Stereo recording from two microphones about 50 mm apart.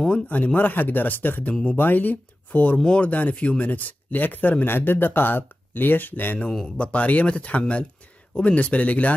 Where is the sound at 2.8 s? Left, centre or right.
Left.